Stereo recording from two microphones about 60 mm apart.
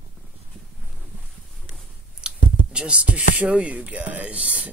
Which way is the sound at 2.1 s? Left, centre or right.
Centre.